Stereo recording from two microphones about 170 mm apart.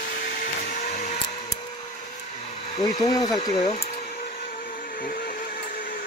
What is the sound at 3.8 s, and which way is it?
Vehicle, 60° left (ahead or behind).